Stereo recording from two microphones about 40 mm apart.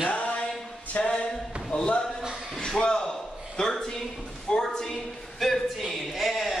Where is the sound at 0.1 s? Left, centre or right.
Left.